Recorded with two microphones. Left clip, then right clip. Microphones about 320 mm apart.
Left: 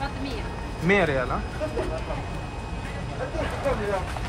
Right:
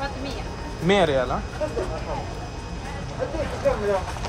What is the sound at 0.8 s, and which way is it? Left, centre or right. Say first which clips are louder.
Speech: right 2 dB; centre.